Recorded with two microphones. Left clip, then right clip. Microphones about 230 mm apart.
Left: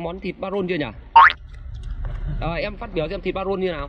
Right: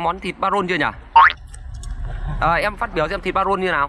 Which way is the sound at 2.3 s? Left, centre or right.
Centre.